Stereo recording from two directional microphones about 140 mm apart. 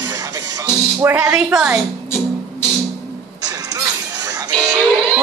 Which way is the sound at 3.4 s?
25° right (ahead or behind).